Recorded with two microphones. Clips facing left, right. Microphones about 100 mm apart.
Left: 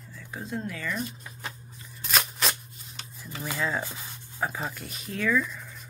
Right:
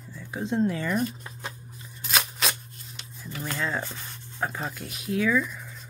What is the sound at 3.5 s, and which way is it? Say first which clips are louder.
Speech: even; 5° left (ahead or behind).